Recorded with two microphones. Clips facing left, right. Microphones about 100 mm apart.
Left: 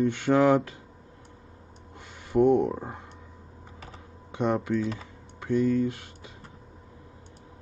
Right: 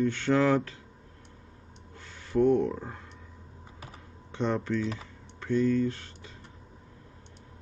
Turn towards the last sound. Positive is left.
turn(degrees=10)  # may be behind; listen again after turning